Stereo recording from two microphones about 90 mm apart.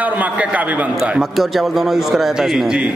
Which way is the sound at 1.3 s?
Centre (ahead or behind).